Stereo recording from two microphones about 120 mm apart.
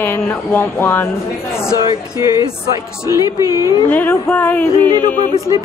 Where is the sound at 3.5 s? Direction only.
25° right (ahead or behind).